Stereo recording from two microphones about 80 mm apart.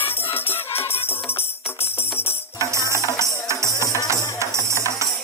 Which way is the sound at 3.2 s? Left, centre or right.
Right.